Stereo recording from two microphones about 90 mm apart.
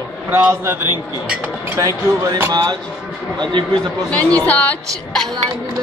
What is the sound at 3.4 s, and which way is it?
Speech, 65° right (ahead or behind).